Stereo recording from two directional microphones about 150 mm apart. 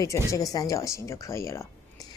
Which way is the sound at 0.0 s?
20° left (ahead or behind).